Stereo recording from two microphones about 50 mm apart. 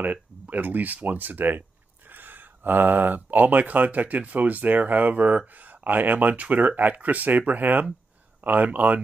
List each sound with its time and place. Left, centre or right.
0.0 s speech: right